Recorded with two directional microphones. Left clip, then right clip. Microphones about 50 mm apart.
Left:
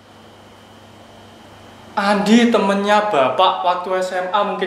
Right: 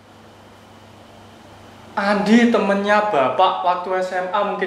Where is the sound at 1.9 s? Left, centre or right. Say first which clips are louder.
Left 2 dB; left.